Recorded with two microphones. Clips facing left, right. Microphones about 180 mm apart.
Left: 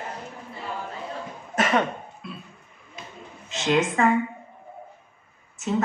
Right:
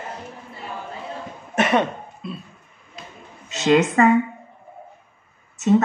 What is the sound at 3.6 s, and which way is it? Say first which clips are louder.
Speech: right 6 dB; 75° right (ahead or behind).